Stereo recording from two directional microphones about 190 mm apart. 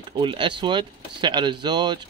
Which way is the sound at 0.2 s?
25° right (ahead or behind).